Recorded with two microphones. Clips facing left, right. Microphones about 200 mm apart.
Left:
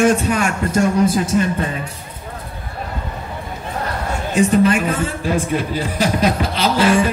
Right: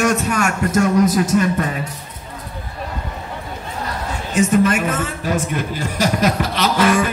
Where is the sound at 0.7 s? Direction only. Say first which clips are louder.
Right 1 dB; 30° left (ahead or behind).